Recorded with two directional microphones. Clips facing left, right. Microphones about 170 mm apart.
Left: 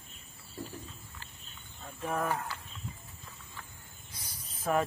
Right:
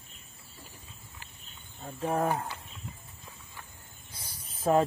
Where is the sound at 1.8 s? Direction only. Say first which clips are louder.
Right 5 dB; 30° right (ahead or behind).